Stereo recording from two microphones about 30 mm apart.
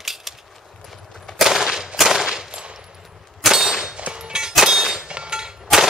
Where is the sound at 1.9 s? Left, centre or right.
Centre.